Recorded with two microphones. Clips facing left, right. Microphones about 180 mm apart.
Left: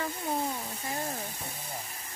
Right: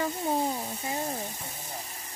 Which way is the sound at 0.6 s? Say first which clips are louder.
Right 3 dB; 20° right (ahead or behind).